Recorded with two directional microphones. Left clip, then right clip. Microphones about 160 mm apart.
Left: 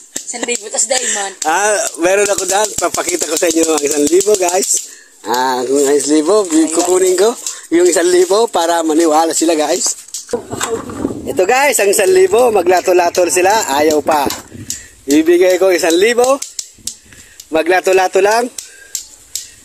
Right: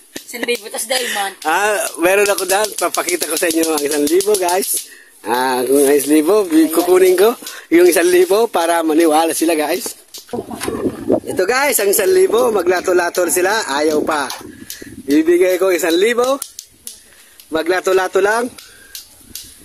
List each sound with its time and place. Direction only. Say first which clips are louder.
0.7 s speech: left 5 dB; 45° right (ahead or behind)
1.0 s speech: left 2 dB; centre (ahead or behind)
5.2 s speech: left 2 dB; 10° right (ahead or behind)
8.0 s speech: left 1 dB; 10° right (ahead or behind)
11.3 s speech: left 7 dB; 5° left (ahead or behind)
17.5 s speech: left 4 dB; 5° left (ahead or behind)